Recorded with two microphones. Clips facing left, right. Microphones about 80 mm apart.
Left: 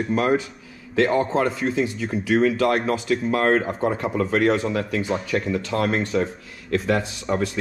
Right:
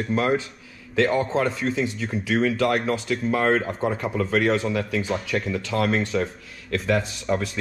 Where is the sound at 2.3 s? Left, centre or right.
Left.